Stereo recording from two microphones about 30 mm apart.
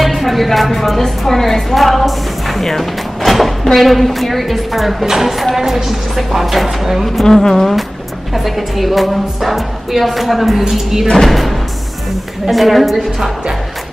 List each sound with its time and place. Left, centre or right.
0.0 s a woman's voice: centre
7.2 s speech: centre
7.5 s speech: centre
10.7 s a woman's voice: centre
11.2 s speech: centre